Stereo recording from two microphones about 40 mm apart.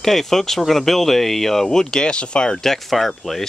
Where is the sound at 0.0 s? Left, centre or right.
Centre; by 2.5 s left.